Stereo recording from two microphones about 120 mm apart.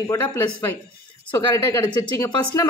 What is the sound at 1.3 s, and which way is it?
Speech, 25° left (ahead or behind).